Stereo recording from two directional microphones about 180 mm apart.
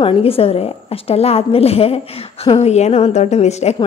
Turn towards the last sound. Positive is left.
turn(degrees=40)  # may be behind; listen again after turning